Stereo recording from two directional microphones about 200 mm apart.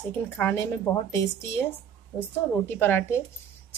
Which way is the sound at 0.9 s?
20° left (ahead or behind).